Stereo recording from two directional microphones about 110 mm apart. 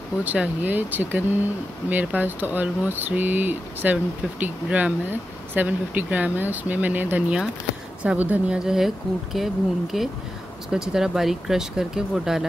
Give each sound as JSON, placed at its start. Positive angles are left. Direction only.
{"t": 0.2, "sound": "speech", "side_deg": -15}